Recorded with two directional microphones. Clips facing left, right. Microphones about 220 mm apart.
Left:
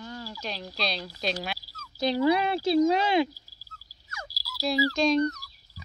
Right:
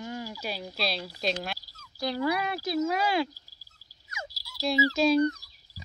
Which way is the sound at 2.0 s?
20° left (ahead or behind).